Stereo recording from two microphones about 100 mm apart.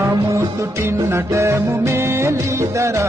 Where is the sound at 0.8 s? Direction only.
30° right (ahead or behind).